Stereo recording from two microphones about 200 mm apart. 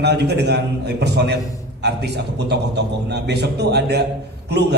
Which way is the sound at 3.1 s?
55° right (ahead or behind).